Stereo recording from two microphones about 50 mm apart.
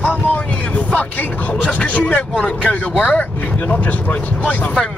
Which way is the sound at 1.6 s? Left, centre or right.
Left.